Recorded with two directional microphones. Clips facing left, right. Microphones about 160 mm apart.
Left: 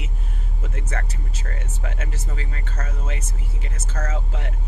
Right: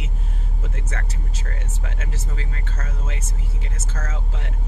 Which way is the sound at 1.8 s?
55° left (ahead or behind).